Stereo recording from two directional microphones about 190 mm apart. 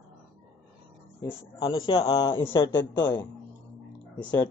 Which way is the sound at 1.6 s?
25° left (ahead or behind).